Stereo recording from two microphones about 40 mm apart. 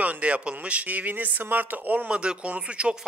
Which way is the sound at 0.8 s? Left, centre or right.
Right.